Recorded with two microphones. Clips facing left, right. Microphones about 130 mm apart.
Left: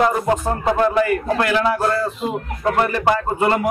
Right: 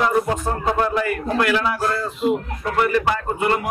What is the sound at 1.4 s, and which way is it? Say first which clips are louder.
Speech: even; 35° left (ahead or behind).